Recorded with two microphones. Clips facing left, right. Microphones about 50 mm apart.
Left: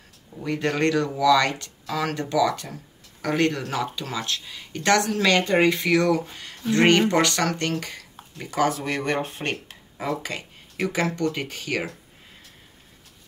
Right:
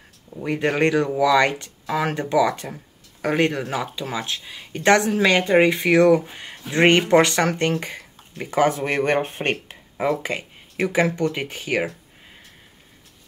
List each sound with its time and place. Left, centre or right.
0.3 s speech: centre